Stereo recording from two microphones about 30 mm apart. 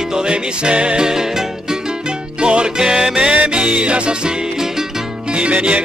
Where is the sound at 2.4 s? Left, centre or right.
Right.